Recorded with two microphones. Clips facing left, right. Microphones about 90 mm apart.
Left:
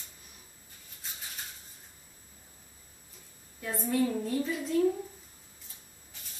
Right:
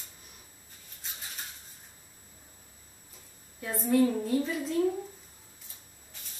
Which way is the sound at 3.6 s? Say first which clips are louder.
Right 4 dB; centre (ahead or behind).